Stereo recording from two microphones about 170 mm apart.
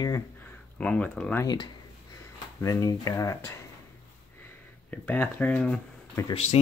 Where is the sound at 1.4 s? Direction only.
25° left (ahead or behind).